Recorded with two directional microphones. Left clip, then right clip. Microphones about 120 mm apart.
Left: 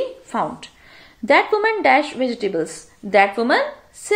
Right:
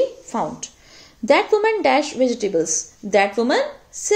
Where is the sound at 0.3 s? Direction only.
45° right (ahead or behind).